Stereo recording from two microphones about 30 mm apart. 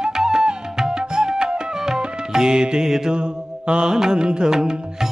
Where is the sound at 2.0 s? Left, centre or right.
Right.